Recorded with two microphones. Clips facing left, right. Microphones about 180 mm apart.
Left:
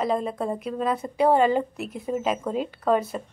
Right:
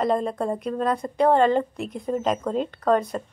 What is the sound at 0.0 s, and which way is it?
A woman's voice, 5° left (ahead or behind).